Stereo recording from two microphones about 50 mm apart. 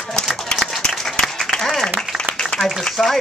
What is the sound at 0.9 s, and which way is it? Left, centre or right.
Applause, centre.